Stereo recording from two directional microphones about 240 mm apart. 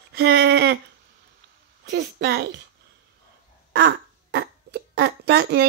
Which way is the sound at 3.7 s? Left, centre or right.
Right.